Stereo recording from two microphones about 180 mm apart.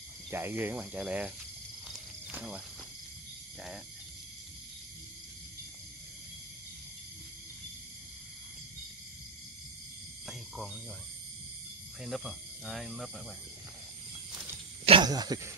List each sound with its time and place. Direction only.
0.3 s speech: 10° right (ahead or behind)
1.9 s cricket: 5° right (ahead or behind)
10.2 s a sound: centre (ahead or behind)
12.0 s speech: centre (ahead or behind)
14.9 s speech: 25° right (ahead or behind)